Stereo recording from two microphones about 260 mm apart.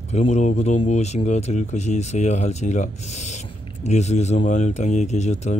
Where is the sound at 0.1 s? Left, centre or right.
Left.